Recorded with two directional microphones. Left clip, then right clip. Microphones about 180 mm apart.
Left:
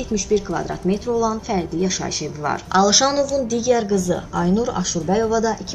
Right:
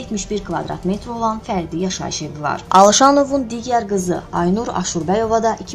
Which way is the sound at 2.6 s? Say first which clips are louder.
Right 7 dB; 45° right (ahead or behind).